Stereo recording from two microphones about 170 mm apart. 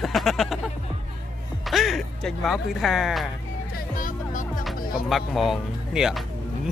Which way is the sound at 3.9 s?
50° left (ahead or behind).